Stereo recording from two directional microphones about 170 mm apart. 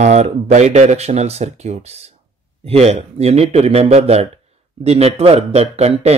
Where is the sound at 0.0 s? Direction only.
40° right (ahead or behind).